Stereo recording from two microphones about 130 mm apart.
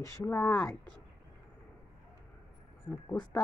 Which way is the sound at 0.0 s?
20° left (ahead or behind).